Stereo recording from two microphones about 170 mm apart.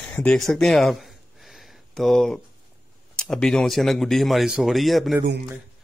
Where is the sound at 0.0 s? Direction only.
5° left (ahead or behind).